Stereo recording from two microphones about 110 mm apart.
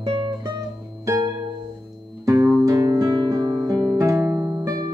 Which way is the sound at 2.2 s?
25° right (ahead or behind).